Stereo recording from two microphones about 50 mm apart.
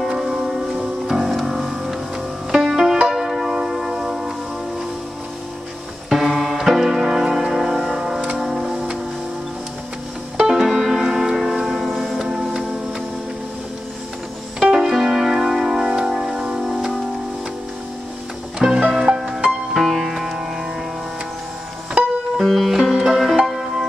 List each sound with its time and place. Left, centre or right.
0.0 s music: centre
6.0 s music: centre
8.5 s tick-tock: centre
10.3 s music: centre
14.6 s piano: centre
16.0 s music: centre
18.6 s music: centre
19.7 s music: centre
22.0 s music: right
22.4 s music: centre